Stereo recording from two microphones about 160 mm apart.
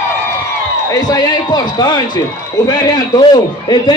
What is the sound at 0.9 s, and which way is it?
A man's voice, 25° left (ahead or behind).